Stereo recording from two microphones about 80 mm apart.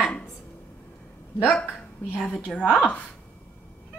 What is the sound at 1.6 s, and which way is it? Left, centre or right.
Speech, left.